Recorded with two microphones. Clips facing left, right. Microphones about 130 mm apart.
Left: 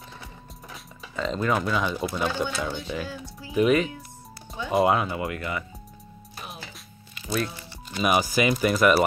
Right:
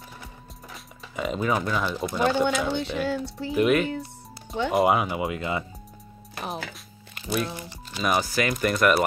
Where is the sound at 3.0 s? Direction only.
70° right (ahead or behind).